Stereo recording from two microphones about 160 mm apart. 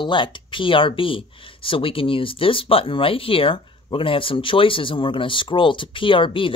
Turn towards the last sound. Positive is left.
turn(degrees=30)  # may be behind; listen again after turning